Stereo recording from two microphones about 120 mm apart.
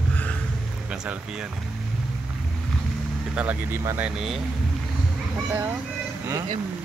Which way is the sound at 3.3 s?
15° right (ahead or behind).